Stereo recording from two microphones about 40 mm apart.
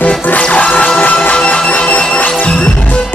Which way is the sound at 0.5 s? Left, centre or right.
Left.